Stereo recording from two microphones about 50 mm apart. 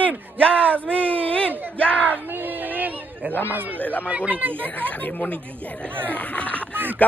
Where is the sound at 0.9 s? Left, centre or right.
Left.